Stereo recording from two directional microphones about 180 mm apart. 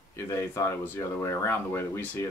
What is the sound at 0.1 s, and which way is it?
Speech, 15° left (ahead or behind).